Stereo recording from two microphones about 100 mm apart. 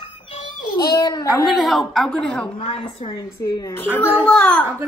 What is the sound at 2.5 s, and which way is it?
A woman's voice, 60° left (ahead or behind).